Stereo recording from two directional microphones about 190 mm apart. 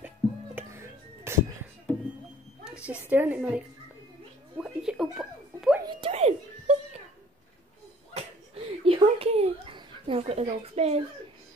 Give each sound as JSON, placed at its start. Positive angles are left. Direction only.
{"t": 0.6, "sound": "music", "side_deg": -15}
{"t": 2.6, "sound": "a woman's voice", "side_deg": -5}
{"t": 4.6, "sound": "music", "side_deg": -5}
{"t": 5.9, "sound": "giggle", "side_deg": -30}
{"t": 8.1, "sound": "a sound", "side_deg": -30}